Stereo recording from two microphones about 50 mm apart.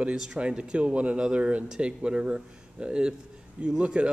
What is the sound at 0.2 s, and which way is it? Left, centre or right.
Speech, right.